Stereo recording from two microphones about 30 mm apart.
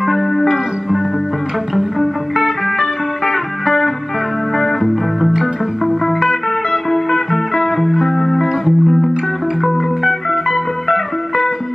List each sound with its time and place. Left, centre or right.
0.0 s music: centre
4.6 s music: centre
7.7 s music: centre